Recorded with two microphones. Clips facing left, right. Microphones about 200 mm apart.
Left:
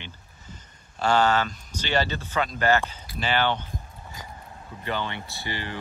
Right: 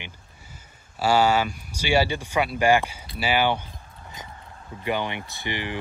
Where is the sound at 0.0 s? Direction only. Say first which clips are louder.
Even; 10° right (ahead or behind).